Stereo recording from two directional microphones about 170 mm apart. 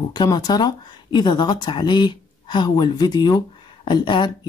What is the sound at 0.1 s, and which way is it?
Speech, 25° left (ahead or behind).